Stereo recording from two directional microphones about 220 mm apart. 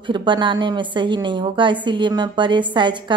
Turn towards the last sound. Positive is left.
turn(degrees=-20)  # may be behind; listen again after turning